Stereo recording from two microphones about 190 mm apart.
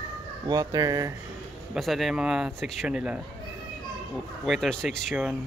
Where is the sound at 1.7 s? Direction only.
Centre (ahead or behind).